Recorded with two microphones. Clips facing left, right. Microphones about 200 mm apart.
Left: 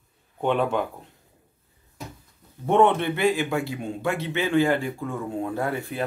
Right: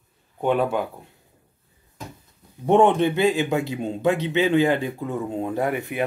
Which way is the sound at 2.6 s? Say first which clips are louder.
Right 3 dB; 15° right (ahead or behind).